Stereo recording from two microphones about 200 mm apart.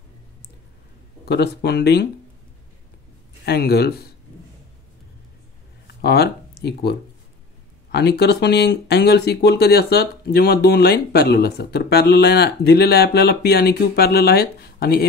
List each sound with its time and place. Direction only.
1.2 s speech: 55° left (ahead or behind)
3.4 s speech: 50° left (ahead or behind)
5.9 s speech: 55° left (ahead or behind)